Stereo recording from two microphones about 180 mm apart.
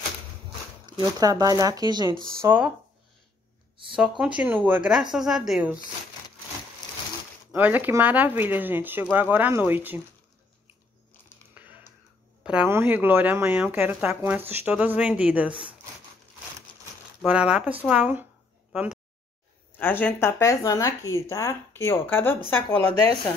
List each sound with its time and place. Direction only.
1.2 s speech: 20° right (ahead or behind)
2.4 s speech: 10° right (ahead or behind)
4.2 s a woman's voice: 5° right (ahead or behind)
7.5 s speech: 10° right (ahead or behind)
11.5 s a sound: 10° right (ahead or behind)
12.4 s speech: 10° right (ahead or behind)
17.2 s speech: 5° right (ahead or behind)
18.7 s a sound: 5° right (ahead or behind)
19.8 s speech: 10° left (ahead or behind)
22.8 s speech: 30° right (ahead or behind)